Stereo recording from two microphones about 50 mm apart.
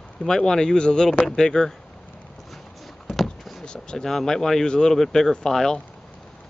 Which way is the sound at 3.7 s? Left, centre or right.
Centre.